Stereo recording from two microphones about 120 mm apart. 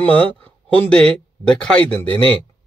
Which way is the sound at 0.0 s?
10° left (ahead or behind).